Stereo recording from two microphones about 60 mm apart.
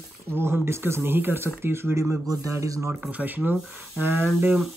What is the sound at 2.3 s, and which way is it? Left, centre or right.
Speech, right.